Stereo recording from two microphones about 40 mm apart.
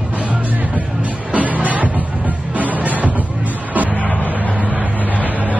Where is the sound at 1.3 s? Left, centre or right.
Right.